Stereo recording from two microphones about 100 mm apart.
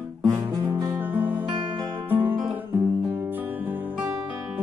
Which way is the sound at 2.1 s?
20° right (ahead or behind).